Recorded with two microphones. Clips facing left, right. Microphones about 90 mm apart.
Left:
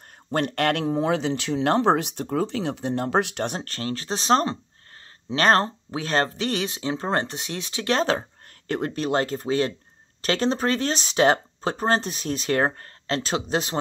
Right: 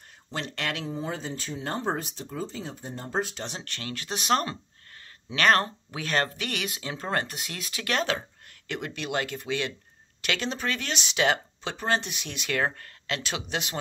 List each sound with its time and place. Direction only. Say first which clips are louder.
0.3 s speech: left 10 dB; 50° left (ahead or behind); by 13.7 s 35° left (ahead or behind)